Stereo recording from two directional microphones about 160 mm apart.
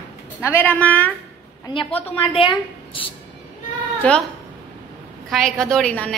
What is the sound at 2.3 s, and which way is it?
Speech, 35° left (ahead or behind).